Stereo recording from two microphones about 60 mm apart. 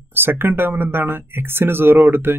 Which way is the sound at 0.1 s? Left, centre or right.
Right.